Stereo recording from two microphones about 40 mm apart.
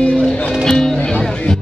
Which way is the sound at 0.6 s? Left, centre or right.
Centre.